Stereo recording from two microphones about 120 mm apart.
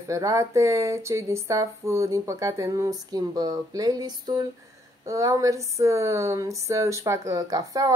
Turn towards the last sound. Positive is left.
turn(degrees=-30)  # may be behind; listen again after turning